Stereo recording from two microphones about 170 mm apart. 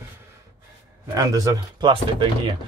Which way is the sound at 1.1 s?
20° right (ahead or behind).